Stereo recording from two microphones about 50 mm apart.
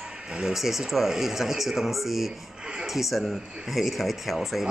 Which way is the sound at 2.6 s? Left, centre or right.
Centre.